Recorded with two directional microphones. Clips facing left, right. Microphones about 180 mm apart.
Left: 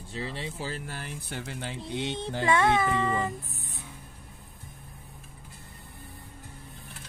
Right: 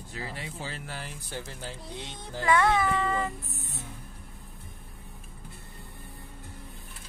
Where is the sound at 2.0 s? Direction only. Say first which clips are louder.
Left 1 dB; 25° left (ahead or behind).